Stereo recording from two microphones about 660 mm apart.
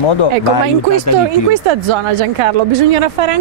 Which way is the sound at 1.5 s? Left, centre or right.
Right.